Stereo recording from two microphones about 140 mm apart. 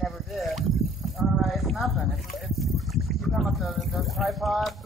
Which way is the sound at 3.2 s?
Centre (ahead or behind).